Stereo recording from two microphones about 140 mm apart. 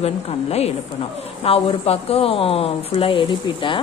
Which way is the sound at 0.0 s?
50° left (ahead or behind).